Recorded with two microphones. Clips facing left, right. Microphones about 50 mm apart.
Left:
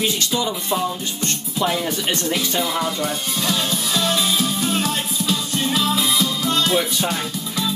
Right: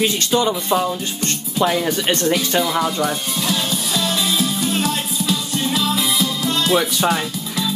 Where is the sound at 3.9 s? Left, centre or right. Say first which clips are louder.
Left 1 dB; left.